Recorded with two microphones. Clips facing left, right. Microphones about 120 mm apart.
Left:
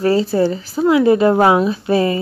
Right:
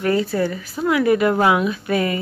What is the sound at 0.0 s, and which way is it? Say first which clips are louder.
Speech: left 5 dB; 30° left (ahead or behind).